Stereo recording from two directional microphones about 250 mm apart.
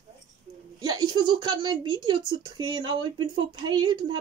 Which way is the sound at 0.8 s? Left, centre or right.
Centre.